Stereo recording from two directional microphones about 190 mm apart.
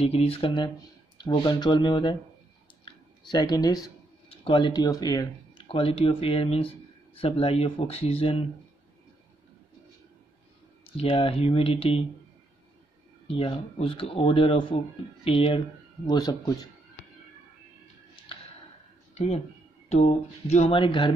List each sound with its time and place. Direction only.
0.0 s speech: 30° left (ahead or behind)
10.9 s speech: 30° left (ahead or behind)
13.3 s speech: 30° left (ahead or behind)
19.1 s speech: 35° left (ahead or behind)